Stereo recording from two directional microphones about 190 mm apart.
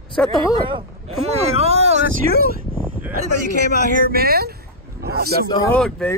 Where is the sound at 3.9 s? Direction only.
50° right (ahead or behind).